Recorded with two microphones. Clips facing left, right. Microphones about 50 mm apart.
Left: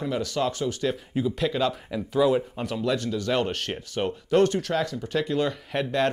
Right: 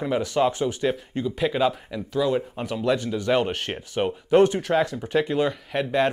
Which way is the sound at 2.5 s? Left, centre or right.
Centre.